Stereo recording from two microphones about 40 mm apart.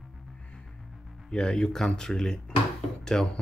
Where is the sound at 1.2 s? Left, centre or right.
Centre.